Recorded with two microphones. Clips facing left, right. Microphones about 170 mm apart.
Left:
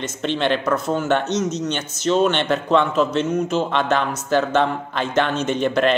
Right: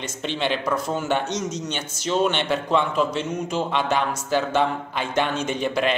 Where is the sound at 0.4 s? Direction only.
10° right (ahead or behind).